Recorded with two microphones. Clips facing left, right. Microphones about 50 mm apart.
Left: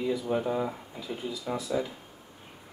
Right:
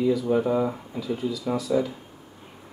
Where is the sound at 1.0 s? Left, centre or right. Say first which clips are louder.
Right 8 dB; left.